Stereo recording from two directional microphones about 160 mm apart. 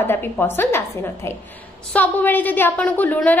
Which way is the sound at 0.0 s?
15° left (ahead or behind).